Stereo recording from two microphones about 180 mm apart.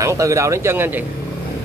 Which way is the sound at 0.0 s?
15° right (ahead or behind).